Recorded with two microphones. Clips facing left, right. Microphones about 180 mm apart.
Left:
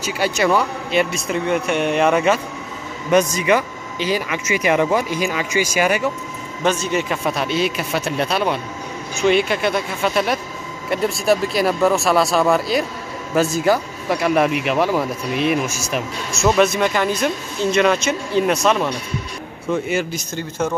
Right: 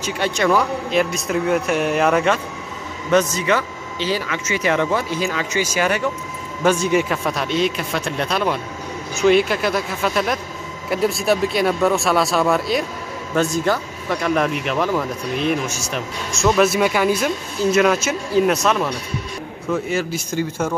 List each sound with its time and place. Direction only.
0.0 s speech: 10° left (ahead or behind)
3.1 s speech: 15° left (ahead or behind)
6.6 s speech: 10° right (ahead or behind)
7.1 s speech: 5° left (ahead or behind)